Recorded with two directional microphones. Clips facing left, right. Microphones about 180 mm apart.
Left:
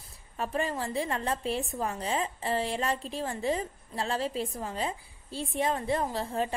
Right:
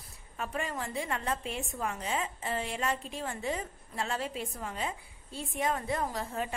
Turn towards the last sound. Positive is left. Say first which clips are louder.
# left 4 dB
turn(degrees=30)  # may be behind; listen again after turning